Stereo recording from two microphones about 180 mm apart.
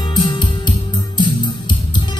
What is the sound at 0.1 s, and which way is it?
Music, 25° left (ahead or behind).